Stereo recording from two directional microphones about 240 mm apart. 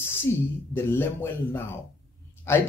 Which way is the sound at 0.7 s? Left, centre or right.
Centre.